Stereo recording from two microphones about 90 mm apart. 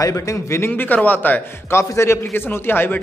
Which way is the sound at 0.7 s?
20° left (ahead or behind).